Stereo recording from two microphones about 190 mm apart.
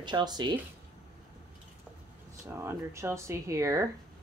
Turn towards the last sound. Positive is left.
turn(degrees=-15)  # may be behind; listen again after turning